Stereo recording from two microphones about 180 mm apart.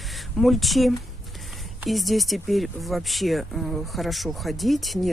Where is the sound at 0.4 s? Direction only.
Centre (ahead or behind).